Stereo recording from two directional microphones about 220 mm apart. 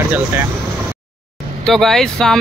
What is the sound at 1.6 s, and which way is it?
Speech, centre (ahead or behind).